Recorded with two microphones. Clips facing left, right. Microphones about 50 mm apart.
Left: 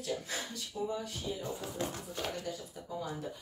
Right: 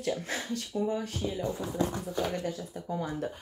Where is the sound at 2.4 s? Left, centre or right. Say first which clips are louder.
Right 6 dB; right.